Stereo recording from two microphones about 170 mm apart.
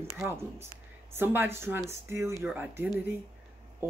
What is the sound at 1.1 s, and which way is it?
Speech, 15° right (ahead or behind).